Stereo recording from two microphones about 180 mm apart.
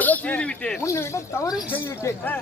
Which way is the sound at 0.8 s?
15° left (ahead or behind).